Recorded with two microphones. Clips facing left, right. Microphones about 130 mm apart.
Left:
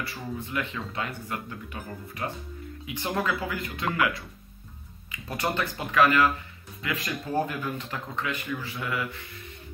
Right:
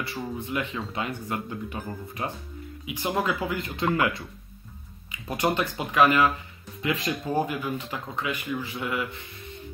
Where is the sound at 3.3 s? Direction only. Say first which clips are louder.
Right 2 dB; 25° right (ahead or behind).